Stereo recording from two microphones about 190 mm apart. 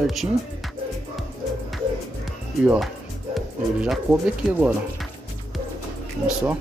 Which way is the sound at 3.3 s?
Centre (ahead or behind).